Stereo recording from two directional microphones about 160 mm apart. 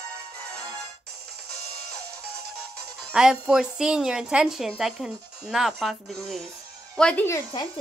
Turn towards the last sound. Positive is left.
turn(degrees=15)  # may be behind; listen again after turning